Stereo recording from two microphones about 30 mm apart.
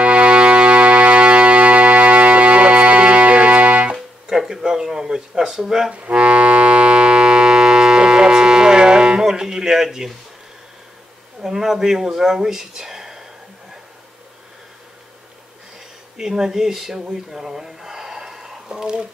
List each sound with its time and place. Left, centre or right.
0.0 s music: right
3.9 s music: centre
5.6 s speech: centre
5.9 s music: right
9.8 s speech: centre
11.4 s speech: centre
12.4 s a sound: centre
16.2 s speech: centre
17.3 s a sound: centre